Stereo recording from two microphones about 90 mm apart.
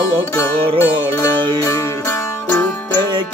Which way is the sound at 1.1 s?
30° left (ahead or behind).